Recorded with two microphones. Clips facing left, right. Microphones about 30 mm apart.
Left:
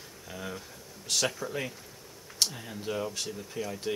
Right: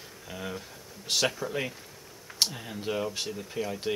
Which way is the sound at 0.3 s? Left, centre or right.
Centre.